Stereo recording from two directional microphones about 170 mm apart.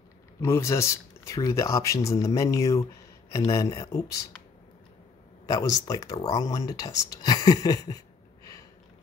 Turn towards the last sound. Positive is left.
turn(degrees=20)  # may be behind; listen again after turning